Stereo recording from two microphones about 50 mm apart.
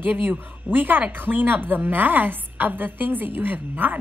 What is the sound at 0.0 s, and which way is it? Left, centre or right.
A woman's voice, right.